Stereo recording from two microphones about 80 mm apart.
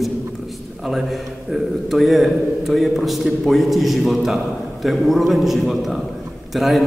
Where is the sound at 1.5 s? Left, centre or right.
Centre.